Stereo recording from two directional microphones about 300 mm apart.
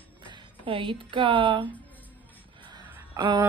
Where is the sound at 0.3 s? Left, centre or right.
Centre.